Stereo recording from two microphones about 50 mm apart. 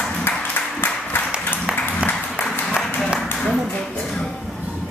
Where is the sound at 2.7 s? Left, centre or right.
Centre.